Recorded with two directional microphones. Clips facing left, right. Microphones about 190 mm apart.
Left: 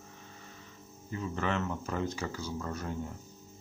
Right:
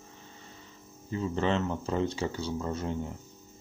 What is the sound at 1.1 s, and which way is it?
Speech, 30° right (ahead or behind).